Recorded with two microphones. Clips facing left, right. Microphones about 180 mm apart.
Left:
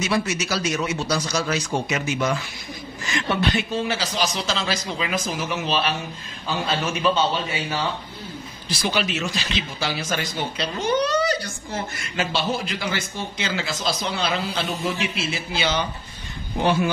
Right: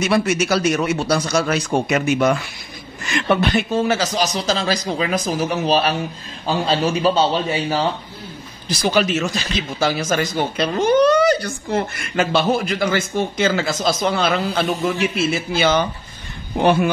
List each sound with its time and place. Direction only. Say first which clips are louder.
0.0 s speech: right 6 dB; 55° right (ahead or behind)